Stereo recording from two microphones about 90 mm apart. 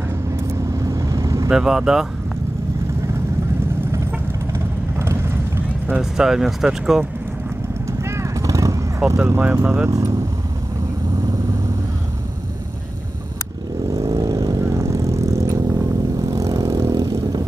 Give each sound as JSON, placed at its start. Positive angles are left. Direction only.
{"t": 0.5, "sound": "vehicle", "side_deg": -40}
{"t": 1.5, "sound": "speech", "side_deg": -5}
{"t": 4.9, "sound": "vehicle", "side_deg": -30}
{"t": 5.9, "sound": "speech", "side_deg": -10}
{"t": 8.0, "sound": "vehicle", "side_deg": -30}
{"t": 9.4, "sound": "speech", "side_deg": -25}
{"t": 13.9, "sound": "vehicle", "side_deg": -40}